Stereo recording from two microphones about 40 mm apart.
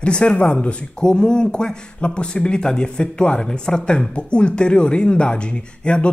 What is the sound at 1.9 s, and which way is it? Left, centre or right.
A man's voice, left.